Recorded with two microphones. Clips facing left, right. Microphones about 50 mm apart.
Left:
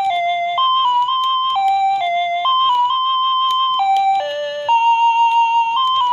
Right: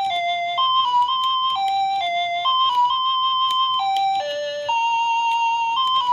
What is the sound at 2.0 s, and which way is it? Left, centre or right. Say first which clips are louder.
Music: left 4 dB; centre.